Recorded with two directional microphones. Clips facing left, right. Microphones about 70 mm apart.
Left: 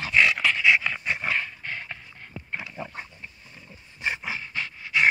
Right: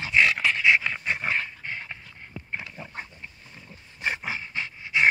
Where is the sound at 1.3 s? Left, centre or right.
Centre.